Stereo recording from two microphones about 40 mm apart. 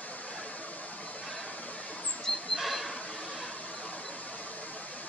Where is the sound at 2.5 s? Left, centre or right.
Centre.